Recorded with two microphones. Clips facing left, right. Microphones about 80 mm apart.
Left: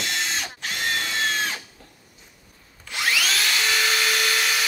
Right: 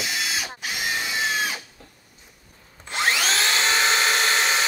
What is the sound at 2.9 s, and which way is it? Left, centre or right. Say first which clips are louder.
Tools: right 2 dB; right.